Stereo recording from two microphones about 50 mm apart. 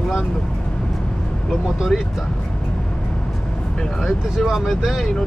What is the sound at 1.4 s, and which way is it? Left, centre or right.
Speech, centre.